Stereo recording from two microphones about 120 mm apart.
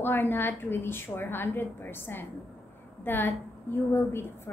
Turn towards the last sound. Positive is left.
turn(degrees=20)  # may be behind; listen again after turning